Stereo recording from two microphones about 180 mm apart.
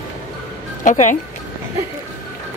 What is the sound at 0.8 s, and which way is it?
Speech, 45° left (ahead or behind).